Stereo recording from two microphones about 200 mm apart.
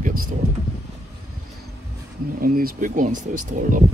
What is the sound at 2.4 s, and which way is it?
Speech, 45° right (ahead or behind).